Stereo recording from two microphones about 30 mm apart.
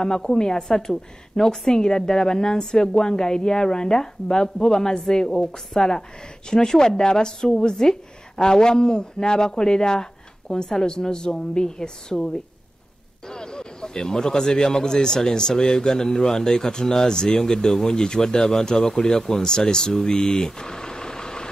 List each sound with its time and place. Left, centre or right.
0.2 s a woman's voice: left
12.1 s a woman's voice: centre
13.3 s a woman's voice: left
20.2 s vehicle: left